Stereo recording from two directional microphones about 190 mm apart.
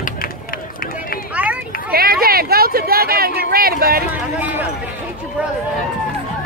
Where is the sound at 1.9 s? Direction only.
50° right (ahead or behind).